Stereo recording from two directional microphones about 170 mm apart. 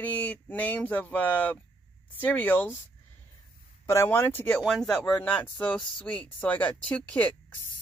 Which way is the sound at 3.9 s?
15° left (ahead or behind).